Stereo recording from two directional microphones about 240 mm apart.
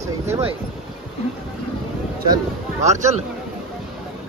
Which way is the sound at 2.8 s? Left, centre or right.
Right.